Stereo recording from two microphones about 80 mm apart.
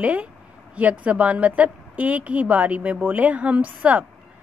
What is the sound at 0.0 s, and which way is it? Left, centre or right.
A woman's voice, centre.